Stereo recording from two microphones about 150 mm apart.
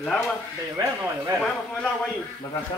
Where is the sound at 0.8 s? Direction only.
20° right (ahead or behind).